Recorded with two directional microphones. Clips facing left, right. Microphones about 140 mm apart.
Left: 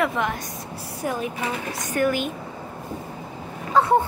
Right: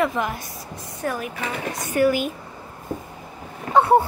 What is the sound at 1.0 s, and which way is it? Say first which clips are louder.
Speech: even; 20° left (ahead or behind).